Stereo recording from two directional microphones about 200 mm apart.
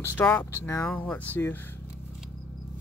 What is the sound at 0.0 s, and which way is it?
Speech, 5° left (ahead or behind).